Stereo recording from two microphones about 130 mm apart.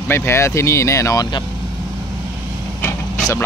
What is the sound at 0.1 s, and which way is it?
Speech, 20° left (ahead or behind).